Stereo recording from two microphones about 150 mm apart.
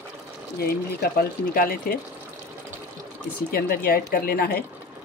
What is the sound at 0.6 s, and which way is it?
Speech, 90° left.